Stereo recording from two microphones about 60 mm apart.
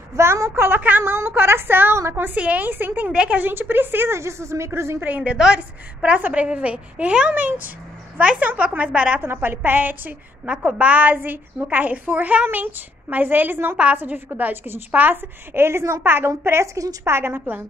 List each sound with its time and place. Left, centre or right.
0.1 s a woman's voice: right
0.7 s a woman's voice: right
2.3 s a woman's voice: right
3.1 s a woman's voice: centre
3.4 s a woman's voice: right
5.0 s a woman's voice: right
9.2 s a woman's voice: right
10.5 s a woman's voice: centre; by 17.4 s right